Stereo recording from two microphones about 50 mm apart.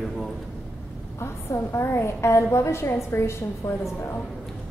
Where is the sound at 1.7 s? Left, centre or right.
Left.